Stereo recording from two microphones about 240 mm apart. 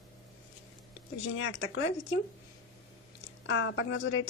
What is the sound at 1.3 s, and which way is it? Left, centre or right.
Speech, left.